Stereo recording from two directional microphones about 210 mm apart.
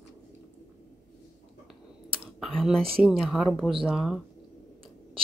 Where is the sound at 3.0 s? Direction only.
Centre (ahead or behind).